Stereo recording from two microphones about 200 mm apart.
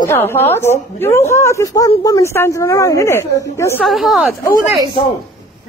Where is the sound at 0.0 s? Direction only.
10° left (ahead or behind).